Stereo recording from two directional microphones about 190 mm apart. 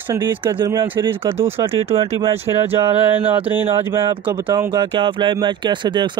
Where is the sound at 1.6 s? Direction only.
30° right (ahead or behind).